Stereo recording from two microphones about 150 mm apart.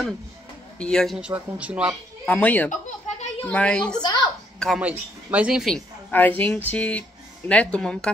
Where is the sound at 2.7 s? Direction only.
50° left (ahead or behind).